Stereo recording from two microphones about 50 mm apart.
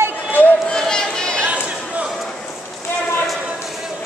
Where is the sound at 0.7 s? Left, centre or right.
Centre.